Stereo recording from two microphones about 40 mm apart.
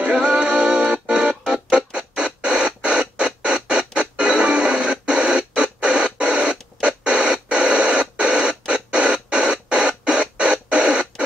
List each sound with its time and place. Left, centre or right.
0.0 s music: right
5.0 s a sound: right
6.8 s radio: right